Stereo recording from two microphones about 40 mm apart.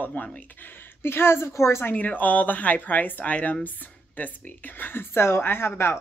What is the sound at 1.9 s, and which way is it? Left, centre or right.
Speech, left.